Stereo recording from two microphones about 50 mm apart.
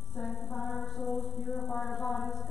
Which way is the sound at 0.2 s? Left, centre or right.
Centre.